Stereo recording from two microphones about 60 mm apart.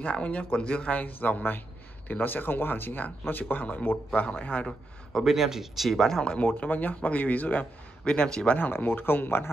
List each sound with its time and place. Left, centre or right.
0.0 s speech: left
5.2 s speech: centre
6.4 s speech: left
8.0 s speech: centre
8.5 s speech: left